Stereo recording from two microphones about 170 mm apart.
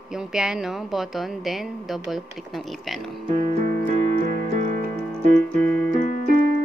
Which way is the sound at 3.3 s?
45° right (ahead or behind).